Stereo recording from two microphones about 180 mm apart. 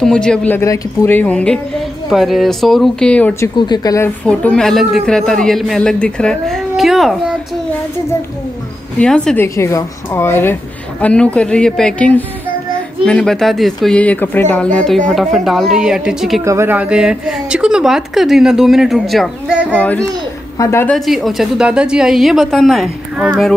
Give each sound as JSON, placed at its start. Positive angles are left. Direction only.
{"t": 0.0, "sound": "a woman's voice", "side_deg": 5}
{"t": 3.5, "sound": "speech", "side_deg": 25}
{"t": 4.3, "sound": "a woman's voice", "side_deg": 5}
{"t": 9.0, "sound": "a woman's voice", "side_deg": 5}
{"t": 16.4, "sound": "a woman's voice", "side_deg": -15}
{"t": 19.8, "sound": "speech", "side_deg": 5}
{"t": 20.9, "sound": "a woman's voice", "side_deg": 0}